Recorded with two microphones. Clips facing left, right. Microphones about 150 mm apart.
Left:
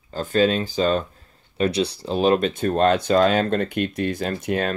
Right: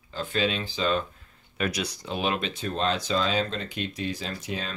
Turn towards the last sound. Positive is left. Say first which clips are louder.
# left 10 dB
turn(degrees=55)  # may be behind; listen again after turning